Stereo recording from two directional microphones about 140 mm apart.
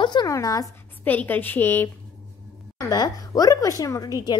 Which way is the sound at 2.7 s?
25° left (ahead or behind).